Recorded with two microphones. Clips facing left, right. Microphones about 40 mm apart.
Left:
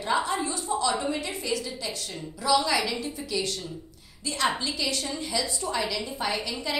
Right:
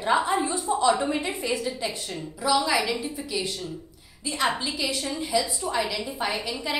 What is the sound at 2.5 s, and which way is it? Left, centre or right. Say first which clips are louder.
A woman's voice: right 1 dB; centre.